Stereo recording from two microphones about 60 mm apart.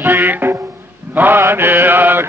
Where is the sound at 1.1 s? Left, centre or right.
Right.